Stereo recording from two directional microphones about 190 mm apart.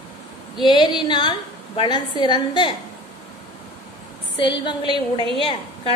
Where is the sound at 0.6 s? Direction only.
25° left (ahead or behind).